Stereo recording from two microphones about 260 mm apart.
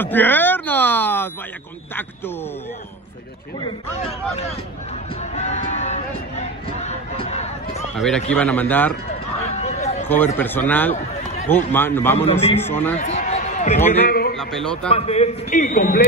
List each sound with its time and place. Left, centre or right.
0.0 s speech: centre
3.6 s a man's voice: left
5.3 s a sound: left
7.9 s speech: centre
9.6 s a sound: left
10.0 s speech: centre
12.9 s a sound: left
14.0 s a man's voice: left
14.3 s a man's voice: centre
14.9 s a man's voice: left